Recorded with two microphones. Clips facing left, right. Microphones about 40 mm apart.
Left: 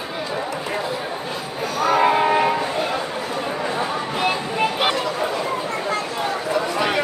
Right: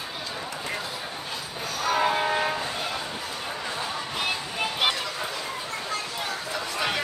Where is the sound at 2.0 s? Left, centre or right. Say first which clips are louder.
Left 8 dB; left.